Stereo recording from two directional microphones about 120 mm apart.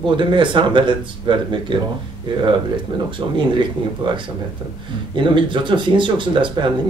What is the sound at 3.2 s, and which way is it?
Speech, 35° right (ahead or behind).